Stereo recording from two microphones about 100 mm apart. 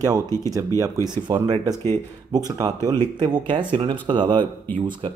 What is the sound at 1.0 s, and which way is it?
Speech, 45° right (ahead or behind).